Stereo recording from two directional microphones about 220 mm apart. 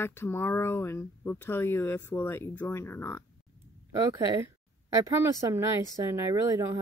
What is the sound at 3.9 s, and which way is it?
Speech, 15° right (ahead or behind).